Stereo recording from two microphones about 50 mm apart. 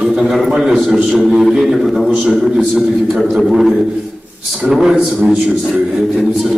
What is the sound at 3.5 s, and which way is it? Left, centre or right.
A man's voice, centre.